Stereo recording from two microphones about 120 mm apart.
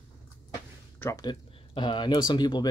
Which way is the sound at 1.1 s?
35° left (ahead or behind).